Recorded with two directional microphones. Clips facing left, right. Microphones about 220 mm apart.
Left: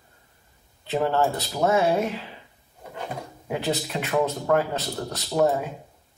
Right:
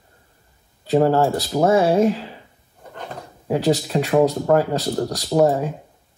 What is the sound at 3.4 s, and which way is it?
Speech, 35° right (ahead or behind).